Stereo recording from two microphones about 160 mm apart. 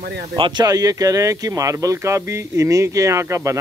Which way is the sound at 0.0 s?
70° right (ahead or behind).